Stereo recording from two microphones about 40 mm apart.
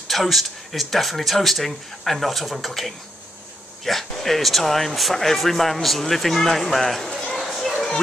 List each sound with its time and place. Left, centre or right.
0.1 s speech: centre
7.1 s a sound: centre
7.3 s children playing: centre